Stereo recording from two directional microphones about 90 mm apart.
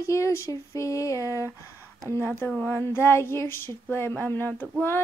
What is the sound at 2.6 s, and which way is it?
Child singing, 20° left (ahead or behind).